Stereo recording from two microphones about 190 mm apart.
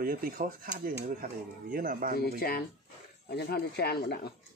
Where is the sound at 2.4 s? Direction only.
55° left (ahead or behind).